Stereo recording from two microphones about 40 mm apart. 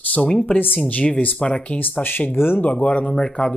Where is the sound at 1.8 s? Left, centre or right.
Left.